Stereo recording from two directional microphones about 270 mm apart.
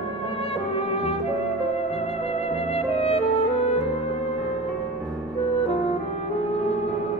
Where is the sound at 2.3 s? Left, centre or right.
Left.